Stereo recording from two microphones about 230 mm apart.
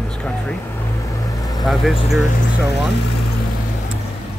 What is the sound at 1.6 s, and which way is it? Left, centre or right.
Speech, centre.